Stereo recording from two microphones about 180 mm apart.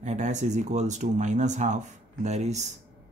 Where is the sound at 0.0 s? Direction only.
40° right (ahead or behind).